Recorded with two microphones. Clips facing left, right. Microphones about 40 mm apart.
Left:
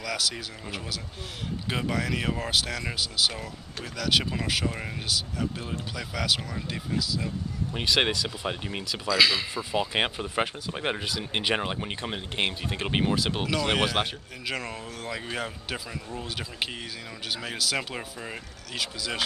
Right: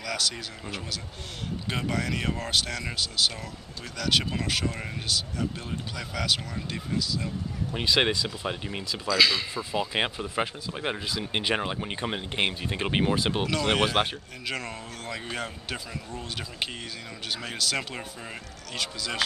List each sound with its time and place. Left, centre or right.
0.0 s speech: centre
11.1 s speech: centre
12.0 s speech: centre